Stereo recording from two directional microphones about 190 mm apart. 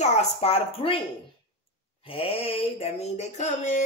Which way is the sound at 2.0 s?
30° left (ahead or behind).